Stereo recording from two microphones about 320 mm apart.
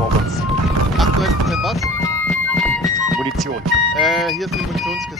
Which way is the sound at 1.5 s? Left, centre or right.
Centre.